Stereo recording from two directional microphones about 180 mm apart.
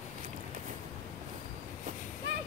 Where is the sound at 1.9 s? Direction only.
45° right (ahead or behind).